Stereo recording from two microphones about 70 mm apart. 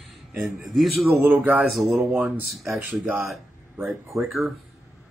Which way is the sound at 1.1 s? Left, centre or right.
Right.